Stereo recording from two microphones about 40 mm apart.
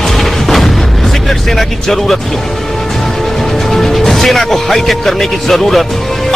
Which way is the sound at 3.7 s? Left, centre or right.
Centre.